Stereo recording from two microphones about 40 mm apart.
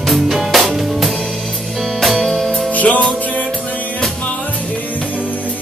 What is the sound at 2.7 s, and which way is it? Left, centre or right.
Music, left.